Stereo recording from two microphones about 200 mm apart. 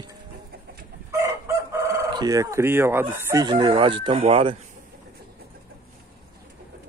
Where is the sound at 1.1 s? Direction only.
15° right (ahead or behind).